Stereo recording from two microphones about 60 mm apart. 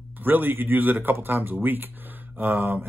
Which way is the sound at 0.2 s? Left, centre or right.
Right.